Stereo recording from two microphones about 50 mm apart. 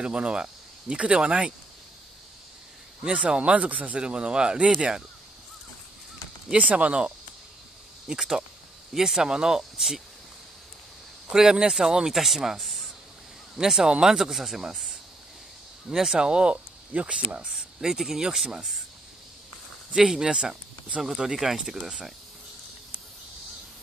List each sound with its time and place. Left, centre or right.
0.0 s speech: centre
3.2 s speech: right
6.5 s speech: right
8.1 s speech: centre
11.2 s speech: centre
13.6 s speech: centre
17.5 s speech: centre
20.0 s speech: centre